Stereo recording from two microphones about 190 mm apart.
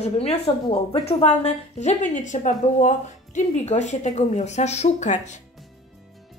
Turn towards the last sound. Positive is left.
turn(degrees=35)  # may be behind; listen again after turning